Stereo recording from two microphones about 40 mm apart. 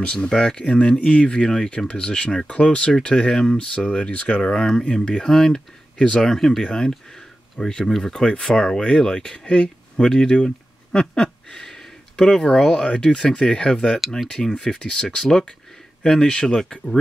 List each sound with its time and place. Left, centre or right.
0.0 s speech: left
4.4 s speech: centre
6.2 s speech: centre
6.6 s speech: centre
11.5 s a sound: centre
12.4 s speech: centre